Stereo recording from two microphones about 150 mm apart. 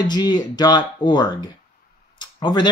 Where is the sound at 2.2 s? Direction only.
30° left (ahead or behind).